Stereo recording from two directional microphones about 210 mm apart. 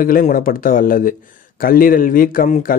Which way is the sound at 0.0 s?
40° left (ahead or behind).